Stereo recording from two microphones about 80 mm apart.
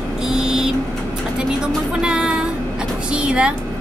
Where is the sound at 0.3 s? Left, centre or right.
Centre.